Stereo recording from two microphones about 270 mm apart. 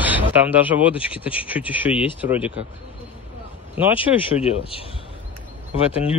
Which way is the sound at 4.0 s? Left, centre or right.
Left.